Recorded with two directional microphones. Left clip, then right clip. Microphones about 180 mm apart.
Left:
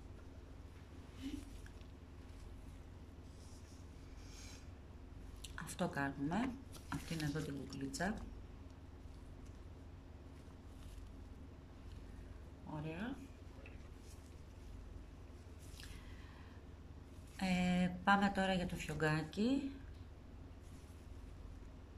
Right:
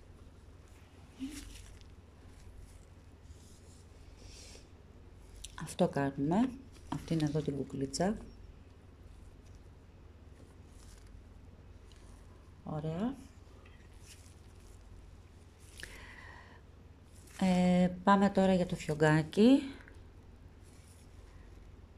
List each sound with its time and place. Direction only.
5.4 s a woman's voice: 30° right (ahead or behind)
12.8 s a sound: 40° right (ahead or behind)
17.4 s speech: 35° right (ahead or behind); by 19.7 s 50° right (ahead or behind)